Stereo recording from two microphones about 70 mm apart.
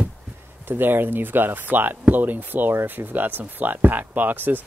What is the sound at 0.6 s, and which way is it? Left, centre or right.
Speech, right.